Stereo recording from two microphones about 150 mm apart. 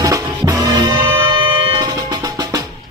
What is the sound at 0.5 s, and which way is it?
Music, 25° right (ahead or behind).